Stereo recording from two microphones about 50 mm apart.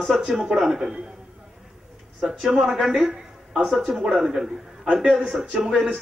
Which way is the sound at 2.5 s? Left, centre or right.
Centre.